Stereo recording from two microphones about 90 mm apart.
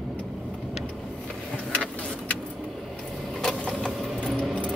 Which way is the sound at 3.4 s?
5° left (ahead or behind).